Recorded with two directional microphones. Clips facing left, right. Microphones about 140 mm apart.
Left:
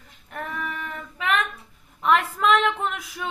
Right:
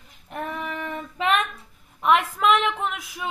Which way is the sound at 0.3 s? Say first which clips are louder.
Right 2 dB; 20° right (ahead or behind).